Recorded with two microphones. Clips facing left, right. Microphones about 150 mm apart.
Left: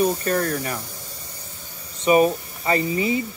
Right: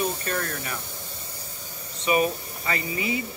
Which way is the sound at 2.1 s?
35° left (ahead or behind).